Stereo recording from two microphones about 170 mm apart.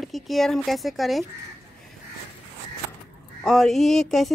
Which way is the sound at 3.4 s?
5° left (ahead or behind).